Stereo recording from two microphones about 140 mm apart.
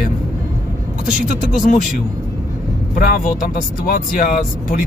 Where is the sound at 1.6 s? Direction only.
70° left (ahead or behind).